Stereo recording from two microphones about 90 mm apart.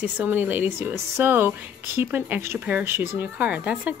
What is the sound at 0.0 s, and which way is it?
Speech, 20° right (ahead or behind).